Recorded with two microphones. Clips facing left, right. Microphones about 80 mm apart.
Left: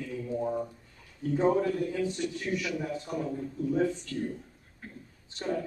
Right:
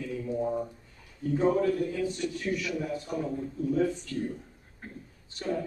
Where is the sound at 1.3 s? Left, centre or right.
Centre.